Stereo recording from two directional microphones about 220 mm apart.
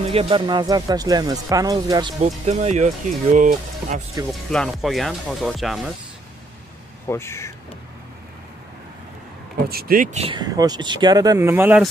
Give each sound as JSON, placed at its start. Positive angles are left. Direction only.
{"t": 0.0, "sound": "speech", "side_deg": -25}
{"t": 2.2, "sound": "speech", "side_deg": -30}
{"t": 4.3, "sound": "speech", "side_deg": 0}
{"t": 7.1, "sound": "speech", "side_deg": 10}
{"t": 9.7, "sound": "speech", "side_deg": -40}
{"t": 10.2, "sound": "speech", "side_deg": -20}